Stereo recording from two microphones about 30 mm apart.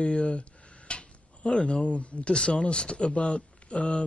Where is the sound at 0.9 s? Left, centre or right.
Left.